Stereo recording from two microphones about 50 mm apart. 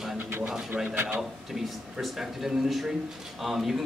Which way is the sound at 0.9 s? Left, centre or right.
Right.